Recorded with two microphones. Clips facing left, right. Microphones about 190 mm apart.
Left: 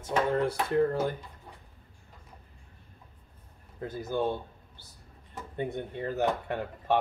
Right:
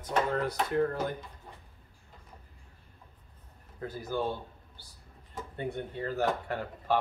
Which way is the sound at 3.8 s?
20° left (ahead or behind).